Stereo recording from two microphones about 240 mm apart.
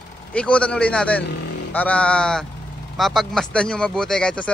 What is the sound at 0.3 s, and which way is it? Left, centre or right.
A man's voice, centre.